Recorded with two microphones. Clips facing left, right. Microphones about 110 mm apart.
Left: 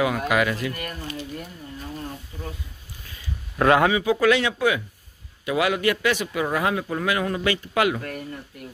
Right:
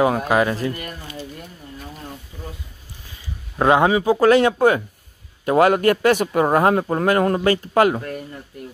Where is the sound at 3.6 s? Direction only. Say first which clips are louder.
Right 2 dB; 25° right (ahead or behind).